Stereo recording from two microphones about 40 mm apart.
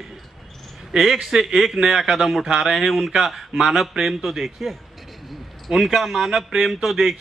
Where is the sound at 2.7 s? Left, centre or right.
Centre.